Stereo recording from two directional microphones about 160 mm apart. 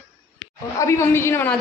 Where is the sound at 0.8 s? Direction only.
15° left (ahead or behind).